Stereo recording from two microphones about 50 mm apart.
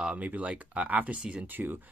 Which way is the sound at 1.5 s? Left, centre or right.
Right.